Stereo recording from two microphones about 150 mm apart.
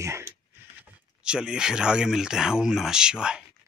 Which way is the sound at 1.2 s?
5° right (ahead or behind).